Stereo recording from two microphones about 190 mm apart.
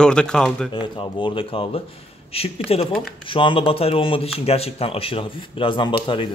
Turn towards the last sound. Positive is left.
turn(degrees=25)  # may be behind; listen again after turning